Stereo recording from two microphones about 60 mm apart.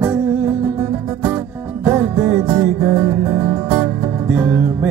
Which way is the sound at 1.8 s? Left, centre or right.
Right.